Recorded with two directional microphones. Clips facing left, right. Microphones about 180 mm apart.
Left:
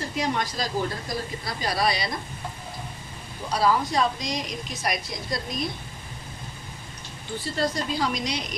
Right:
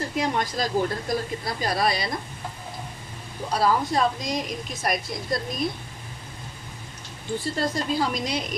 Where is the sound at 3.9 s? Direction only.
50° right (ahead or behind).